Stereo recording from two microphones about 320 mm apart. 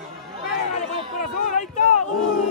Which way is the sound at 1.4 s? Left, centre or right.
Left.